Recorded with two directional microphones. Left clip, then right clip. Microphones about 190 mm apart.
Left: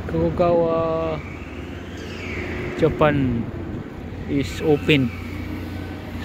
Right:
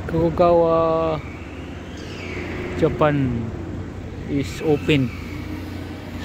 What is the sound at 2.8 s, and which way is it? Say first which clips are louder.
Speech: left 1 dB; 5° right (ahead or behind).